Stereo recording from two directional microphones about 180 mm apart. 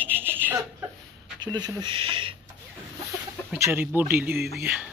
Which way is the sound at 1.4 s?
20° right (ahead or behind).